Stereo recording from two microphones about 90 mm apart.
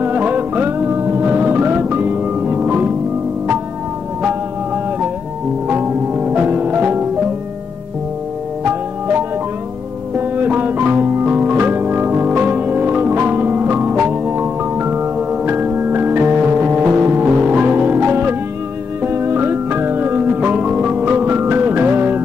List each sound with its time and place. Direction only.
0.0 s music: 20° right (ahead or behind)
5.7 s music: 20° right (ahead or behind)
10.1 s music: 20° right (ahead or behind)